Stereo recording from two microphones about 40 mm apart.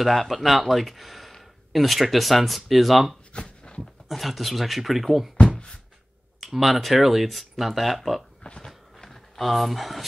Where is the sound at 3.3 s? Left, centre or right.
Left.